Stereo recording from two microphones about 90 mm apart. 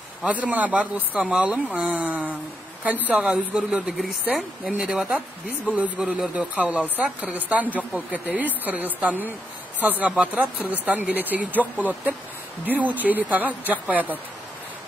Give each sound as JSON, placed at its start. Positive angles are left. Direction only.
{"t": 0.2, "sound": "speech", "side_deg": -15}
{"t": 1.1, "sound": "speech", "side_deg": 0}
{"t": 1.4, "sound": "speech", "side_deg": -15}